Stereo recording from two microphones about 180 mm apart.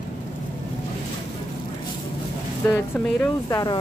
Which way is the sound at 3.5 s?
20° left (ahead or behind).